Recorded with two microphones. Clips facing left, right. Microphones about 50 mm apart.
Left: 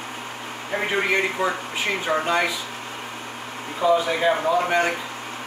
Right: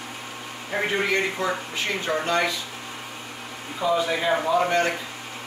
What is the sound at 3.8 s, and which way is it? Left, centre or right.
Speech, centre.